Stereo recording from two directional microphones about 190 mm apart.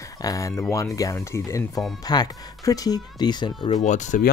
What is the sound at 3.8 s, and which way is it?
Speech, 40° left (ahead or behind).